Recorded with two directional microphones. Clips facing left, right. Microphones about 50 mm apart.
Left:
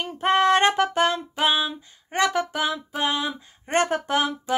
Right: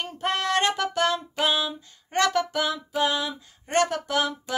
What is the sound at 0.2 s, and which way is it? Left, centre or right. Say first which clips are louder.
Female singing: left 6 dB; left.